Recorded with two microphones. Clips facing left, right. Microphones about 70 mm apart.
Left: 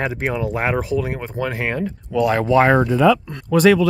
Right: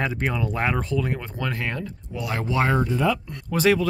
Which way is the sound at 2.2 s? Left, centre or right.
Left.